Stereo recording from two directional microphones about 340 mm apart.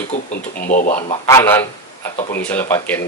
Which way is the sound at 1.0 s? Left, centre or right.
Centre.